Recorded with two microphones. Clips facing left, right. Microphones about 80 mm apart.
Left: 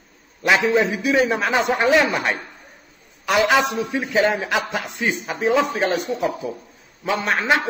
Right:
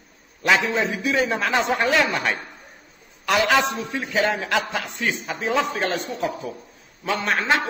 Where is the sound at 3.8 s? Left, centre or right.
Centre.